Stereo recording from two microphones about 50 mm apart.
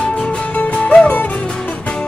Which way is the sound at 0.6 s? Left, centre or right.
Left.